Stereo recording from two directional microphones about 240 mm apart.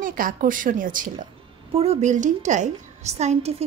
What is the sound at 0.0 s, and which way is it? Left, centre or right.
A woman's voice, right.